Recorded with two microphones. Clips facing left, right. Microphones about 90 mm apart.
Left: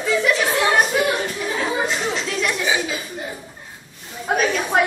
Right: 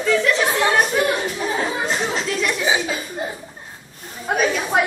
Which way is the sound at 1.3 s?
35° right (ahead or behind).